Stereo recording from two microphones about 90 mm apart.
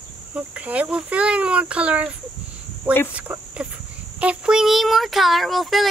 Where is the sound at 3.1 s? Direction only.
15° right (ahead or behind); by 5.8 s centre (ahead or behind).